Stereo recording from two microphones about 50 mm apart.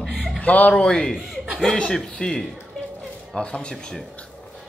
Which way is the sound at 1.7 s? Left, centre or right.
Centre.